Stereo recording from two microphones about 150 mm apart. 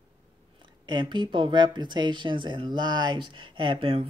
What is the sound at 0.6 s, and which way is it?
Speech, 30° right (ahead or behind).